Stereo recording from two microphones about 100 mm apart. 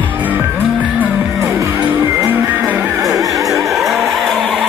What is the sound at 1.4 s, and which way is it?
Music, 25° right (ahead or behind).